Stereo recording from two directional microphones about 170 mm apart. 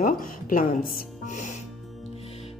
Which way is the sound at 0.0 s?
55° left (ahead or behind).